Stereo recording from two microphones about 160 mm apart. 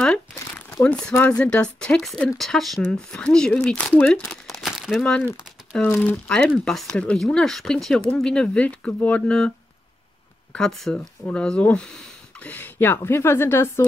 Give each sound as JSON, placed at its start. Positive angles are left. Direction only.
{"t": 0.0, "sound": "crumpling", "side_deg": 10}
{"t": 1.1, "sound": "speech", "side_deg": 15}
{"t": 1.4, "sound": "speech", "side_deg": 5}
{"t": 10.5, "sound": "speech", "side_deg": 0}